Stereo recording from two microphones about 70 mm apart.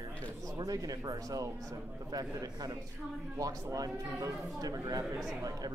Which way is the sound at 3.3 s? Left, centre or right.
Right.